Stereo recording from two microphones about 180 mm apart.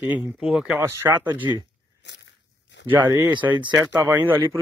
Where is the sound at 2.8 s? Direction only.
10° right (ahead or behind).